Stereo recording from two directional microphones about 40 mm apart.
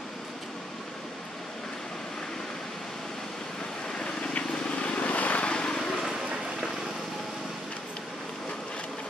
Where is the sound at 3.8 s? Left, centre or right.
Left.